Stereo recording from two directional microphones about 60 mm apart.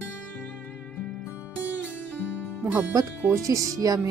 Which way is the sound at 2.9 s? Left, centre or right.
Right.